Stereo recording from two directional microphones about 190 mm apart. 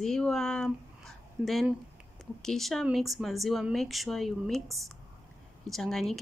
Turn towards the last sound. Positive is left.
turn(degrees=0)  # may be behind; listen again after turning